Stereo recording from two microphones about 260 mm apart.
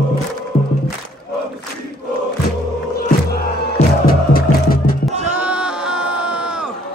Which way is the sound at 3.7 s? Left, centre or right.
Left.